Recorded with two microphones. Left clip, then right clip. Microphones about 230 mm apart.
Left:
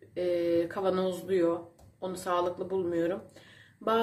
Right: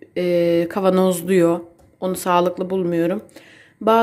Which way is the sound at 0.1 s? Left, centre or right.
Right.